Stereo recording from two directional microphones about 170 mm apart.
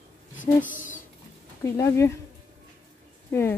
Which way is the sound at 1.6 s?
15° left (ahead or behind).